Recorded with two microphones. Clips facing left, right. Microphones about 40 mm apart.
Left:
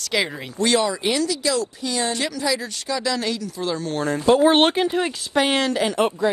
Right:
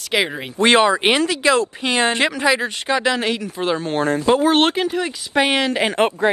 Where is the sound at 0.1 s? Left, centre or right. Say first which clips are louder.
Right 3 dB; right.